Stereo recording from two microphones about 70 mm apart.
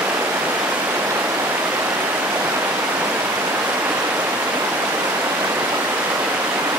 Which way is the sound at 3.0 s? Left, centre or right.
Right.